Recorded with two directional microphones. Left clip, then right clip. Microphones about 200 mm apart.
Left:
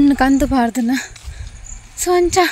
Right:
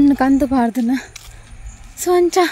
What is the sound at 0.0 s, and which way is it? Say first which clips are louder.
A woman's voice: even; 5° right (ahead or behind).